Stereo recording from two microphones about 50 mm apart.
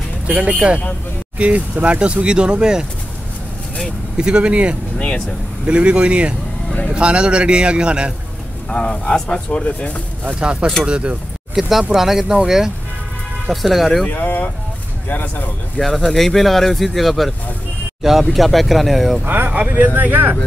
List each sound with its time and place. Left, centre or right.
0.3 s speech: right
4.2 s speech: right
4.9 s speech: left
5.7 s speech: right
8.6 s speech: left
10.4 s speech: right
11.6 s speech: centre
14.0 s speech: left
15.8 s speech: centre
19.2 s speech: right